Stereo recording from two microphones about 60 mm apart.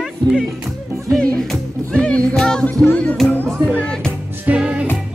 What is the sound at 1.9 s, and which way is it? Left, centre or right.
Music, centre.